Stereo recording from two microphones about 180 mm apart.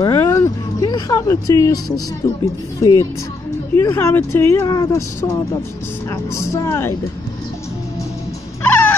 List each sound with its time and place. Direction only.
0.0 s vehicle: 15° left (ahead or behind)
2.8 s speech: 20° left (ahead or behind)
8.6 s dog: 10° left (ahead or behind)